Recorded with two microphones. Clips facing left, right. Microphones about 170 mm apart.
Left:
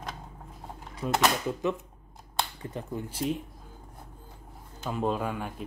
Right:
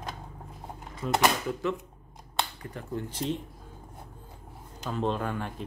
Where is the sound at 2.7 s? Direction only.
10° left (ahead or behind).